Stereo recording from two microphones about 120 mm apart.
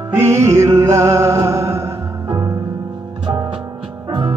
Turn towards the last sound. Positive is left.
turn(degrees=-45)  # may be behind; listen again after turning